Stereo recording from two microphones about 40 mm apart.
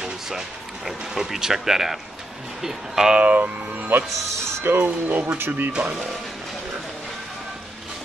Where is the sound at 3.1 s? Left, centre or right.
Right.